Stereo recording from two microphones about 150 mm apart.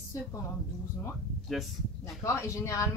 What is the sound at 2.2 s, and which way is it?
Speech, 20° left (ahead or behind).